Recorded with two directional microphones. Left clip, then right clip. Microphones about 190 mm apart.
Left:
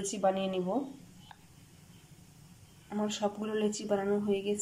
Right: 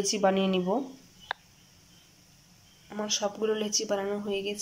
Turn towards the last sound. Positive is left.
turn(degrees=0)  # may be behind; listen again after turning